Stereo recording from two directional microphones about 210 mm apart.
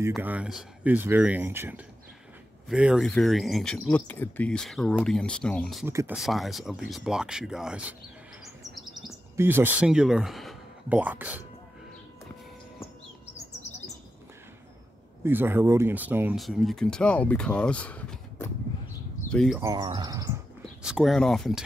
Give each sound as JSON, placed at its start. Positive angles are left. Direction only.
{"t": 0.1, "sound": "speech", "side_deg": -5}
{"t": 5.9, "sound": "speech", "side_deg": -10}
{"t": 9.4, "sound": "speech", "side_deg": -10}
{"t": 15.2, "sound": "speech", "side_deg": -10}
{"t": 19.6, "sound": "speech", "side_deg": -20}
{"t": 20.8, "sound": "speech", "side_deg": 0}